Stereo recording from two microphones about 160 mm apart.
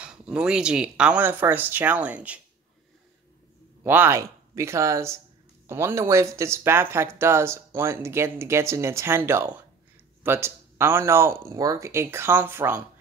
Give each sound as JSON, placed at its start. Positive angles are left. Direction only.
{"t": 0.0, "sound": "speech", "side_deg": -5}
{"t": 3.8, "sound": "speech", "side_deg": -15}